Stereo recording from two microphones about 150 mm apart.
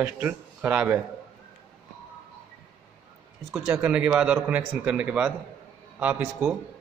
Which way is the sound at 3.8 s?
5° right (ahead or behind).